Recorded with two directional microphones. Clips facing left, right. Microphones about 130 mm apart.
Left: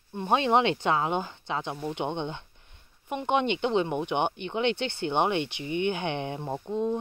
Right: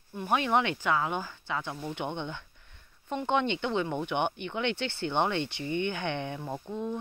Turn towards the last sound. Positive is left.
turn(degrees=20)  # may be behind; listen again after turning